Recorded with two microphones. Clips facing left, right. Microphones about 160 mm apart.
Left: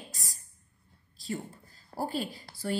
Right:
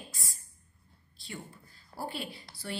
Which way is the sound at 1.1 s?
40° left (ahead or behind).